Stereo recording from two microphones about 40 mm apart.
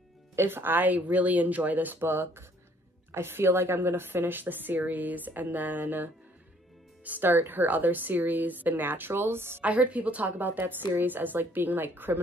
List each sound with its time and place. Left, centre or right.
0.4 s speech: right
2.0 s a woman's voice: right
7.1 s a woman's voice: right
9.7 s a woman's voice: right
10.4 s a woman's voice: right